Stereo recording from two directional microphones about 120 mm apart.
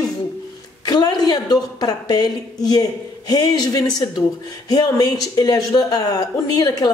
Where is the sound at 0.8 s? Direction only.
35° left (ahead or behind).